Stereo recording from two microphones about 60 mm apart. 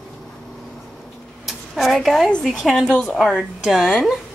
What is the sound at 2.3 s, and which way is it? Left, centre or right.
Speech, centre.